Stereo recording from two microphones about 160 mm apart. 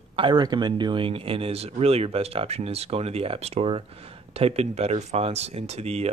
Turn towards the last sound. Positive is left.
turn(degrees=-40)  # may be behind; listen again after turning